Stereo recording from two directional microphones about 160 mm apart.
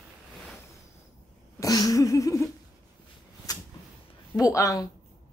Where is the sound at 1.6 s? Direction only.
20° left (ahead or behind).